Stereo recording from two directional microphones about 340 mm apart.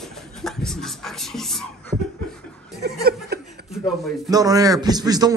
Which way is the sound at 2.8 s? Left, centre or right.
Right.